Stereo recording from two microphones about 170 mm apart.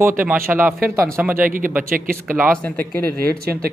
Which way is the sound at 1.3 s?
55° right (ahead or behind).